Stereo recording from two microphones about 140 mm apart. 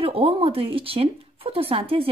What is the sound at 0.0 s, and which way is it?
Speech, 40° right (ahead or behind).